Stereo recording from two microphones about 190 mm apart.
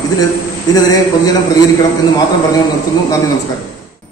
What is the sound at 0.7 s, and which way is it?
Speech, 20° left (ahead or behind).